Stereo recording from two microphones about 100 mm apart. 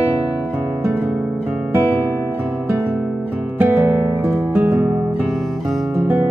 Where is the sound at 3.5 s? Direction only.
20° right (ahead or behind).